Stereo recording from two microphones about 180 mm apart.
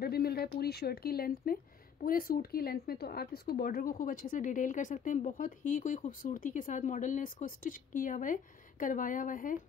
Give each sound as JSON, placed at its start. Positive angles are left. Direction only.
{"t": 0.0, "sound": "a woman's voice", "side_deg": 60}